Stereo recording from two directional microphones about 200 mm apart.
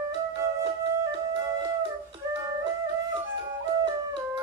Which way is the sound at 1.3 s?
20° right (ahead or behind).